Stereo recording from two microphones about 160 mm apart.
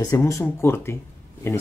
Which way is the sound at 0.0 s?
20° left (ahead or behind).